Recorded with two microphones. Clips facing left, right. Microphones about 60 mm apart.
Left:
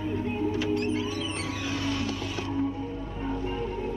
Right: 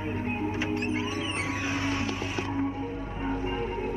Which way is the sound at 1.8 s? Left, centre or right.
Right.